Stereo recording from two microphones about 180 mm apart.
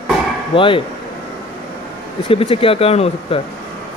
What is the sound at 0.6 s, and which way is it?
Speech, 30° left (ahead or behind).